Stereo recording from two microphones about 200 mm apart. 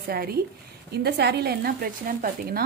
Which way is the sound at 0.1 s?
50° right (ahead or behind).